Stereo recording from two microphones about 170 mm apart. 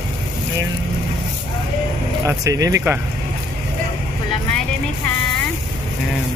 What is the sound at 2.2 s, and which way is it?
Speech, 20° right (ahead or behind).